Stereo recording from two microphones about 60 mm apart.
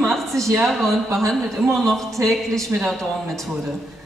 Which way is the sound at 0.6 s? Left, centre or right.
Centre.